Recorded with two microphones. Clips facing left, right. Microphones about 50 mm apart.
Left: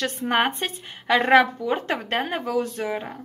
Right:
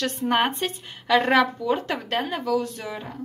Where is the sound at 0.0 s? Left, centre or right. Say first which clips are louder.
Even; centre.